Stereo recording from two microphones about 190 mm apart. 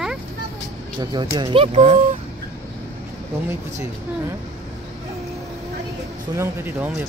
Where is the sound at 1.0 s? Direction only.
20° right (ahead or behind).